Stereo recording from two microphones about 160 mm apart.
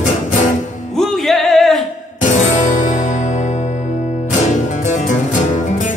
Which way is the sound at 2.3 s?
50° left (ahead or behind).